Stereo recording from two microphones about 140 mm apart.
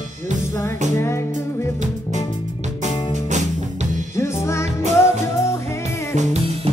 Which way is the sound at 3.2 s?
60° right (ahead or behind).